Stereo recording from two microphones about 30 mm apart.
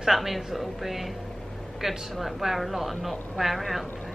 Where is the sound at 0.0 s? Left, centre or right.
Centre.